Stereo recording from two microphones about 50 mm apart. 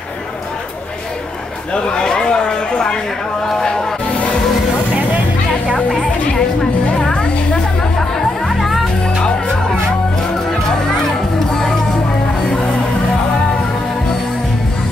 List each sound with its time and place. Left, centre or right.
1.7 s a sound: centre
6.6 s music: centre
8.5 s music: centre